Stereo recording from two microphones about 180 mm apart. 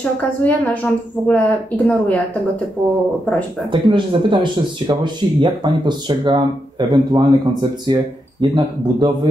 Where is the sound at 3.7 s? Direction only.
25° right (ahead or behind).